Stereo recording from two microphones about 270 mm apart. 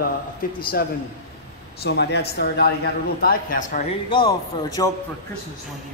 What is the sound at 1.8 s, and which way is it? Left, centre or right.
Speech, left.